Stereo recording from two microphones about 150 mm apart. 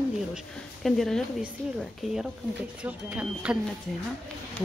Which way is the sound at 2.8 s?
10° right (ahead or behind).